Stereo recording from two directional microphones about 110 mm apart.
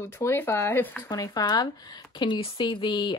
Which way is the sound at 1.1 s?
35° left (ahead or behind).